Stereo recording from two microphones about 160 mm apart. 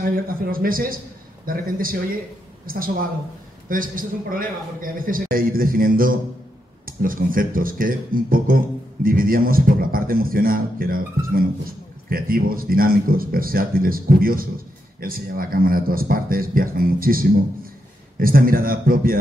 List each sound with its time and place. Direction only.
0.0 s a man's voice: 65° right (ahead or behind)